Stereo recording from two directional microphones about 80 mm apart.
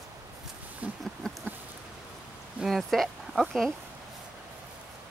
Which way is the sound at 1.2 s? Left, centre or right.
Centre.